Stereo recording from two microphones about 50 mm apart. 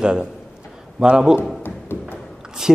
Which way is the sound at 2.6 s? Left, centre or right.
Centre.